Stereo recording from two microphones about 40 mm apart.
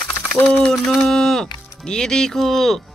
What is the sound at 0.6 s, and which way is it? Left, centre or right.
Speech, centre.